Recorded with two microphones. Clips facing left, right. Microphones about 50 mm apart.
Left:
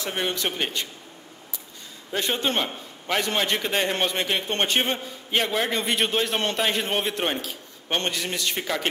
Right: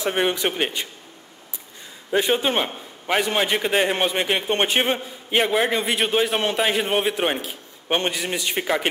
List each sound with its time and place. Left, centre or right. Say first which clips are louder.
0.0 s a man's voice: right 5 dB; right
2.0 s a man's voice: right 5 dB; centre
5.8 s a man's voice: right 3 dB; centre; by 8.8 s right